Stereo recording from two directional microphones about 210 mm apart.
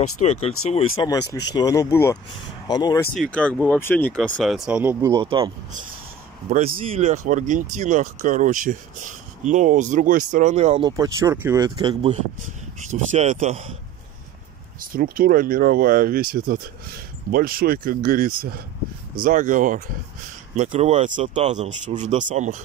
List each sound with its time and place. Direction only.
0.2 s speech: 30° left (ahead or behind)
3.2 s speech: 5° left (ahead or behind)
5.1 s speech: 25° right (ahead or behind)
6.5 s speech: 45° right (ahead or behind)
6.9 s speech: 30° right (ahead or behind)
10.9 s speech: 15° right (ahead or behind); by 13.7 s 35° right (ahead or behind)
14.9 s speech: 40° right (ahead or behind)
17.3 s speech: 45° right (ahead or behind)